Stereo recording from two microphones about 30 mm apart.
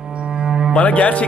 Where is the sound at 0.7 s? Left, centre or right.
Left.